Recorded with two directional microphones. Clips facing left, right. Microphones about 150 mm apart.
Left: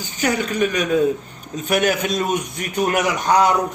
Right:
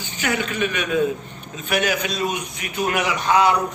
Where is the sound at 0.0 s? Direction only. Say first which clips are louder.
Left 3 dB; 40° left (ahead or behind).